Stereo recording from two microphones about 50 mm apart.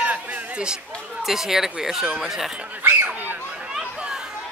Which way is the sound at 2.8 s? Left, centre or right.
Right.